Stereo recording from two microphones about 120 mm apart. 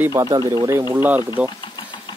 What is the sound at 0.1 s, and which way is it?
Speech, 30° right (ahead or behind).